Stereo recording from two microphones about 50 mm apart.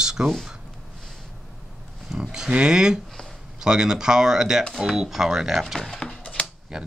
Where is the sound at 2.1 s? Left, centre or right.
Centre.